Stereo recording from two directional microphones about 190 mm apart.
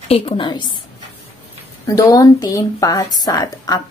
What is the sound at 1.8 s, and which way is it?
Speech, 15° left (ahead or behind).